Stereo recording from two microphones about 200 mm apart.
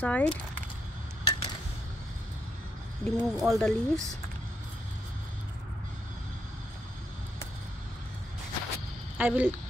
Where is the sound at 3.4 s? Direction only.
Centre (ahead or behind).